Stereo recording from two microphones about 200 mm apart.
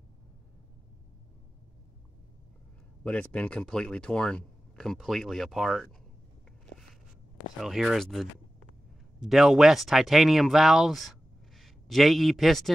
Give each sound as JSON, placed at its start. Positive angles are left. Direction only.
{"t": 3.0, "sound": "speech", "side_deg": 5}
{"t": 7.6, "sound": "speech", "side_deg": 0}